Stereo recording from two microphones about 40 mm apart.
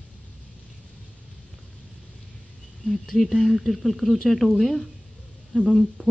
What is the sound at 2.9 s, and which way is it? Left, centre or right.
Speech, centre.